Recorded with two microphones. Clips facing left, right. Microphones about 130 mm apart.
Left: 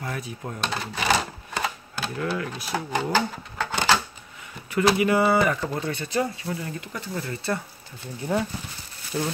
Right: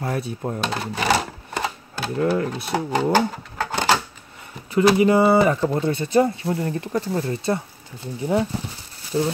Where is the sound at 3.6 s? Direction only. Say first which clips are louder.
Right 3 dB; 35° right (ahead or behind).